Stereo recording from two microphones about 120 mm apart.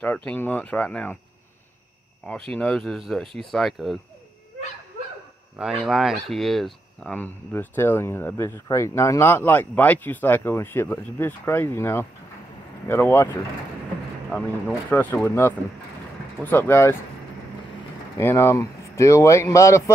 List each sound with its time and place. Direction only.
0.0 s speech: 15° left (ahead or behind)
2.2 s speech: 5° left (ahead or behind)
5.6 s speech: 5° right (ahead or behind)
7.1 s speech: 15° left (ahead or behind)
14.9 s speech: 15° left (ahead or behind)
18.1 s speech: 20° left (ahead or behind)